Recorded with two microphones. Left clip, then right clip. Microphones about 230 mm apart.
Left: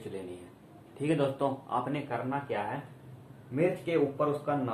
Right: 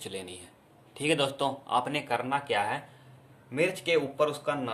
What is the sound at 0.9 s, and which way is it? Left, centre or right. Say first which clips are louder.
A man's voice: right 2 dB; right.